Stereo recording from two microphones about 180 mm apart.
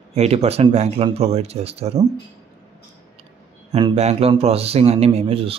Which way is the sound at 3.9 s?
35° right (ahead or behind).